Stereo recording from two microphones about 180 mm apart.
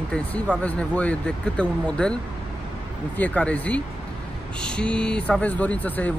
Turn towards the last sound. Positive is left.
turn(degrees=10)  # may be behind; listen again after turning